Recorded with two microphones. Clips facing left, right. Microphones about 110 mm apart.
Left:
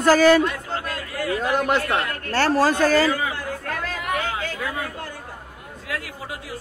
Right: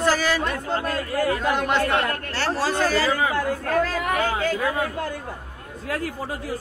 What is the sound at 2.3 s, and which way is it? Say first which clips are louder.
Speech: left 7 dB; 50° left (ahead or behind).